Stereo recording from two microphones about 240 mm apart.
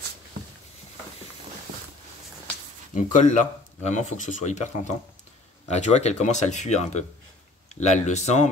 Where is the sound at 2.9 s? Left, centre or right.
Left.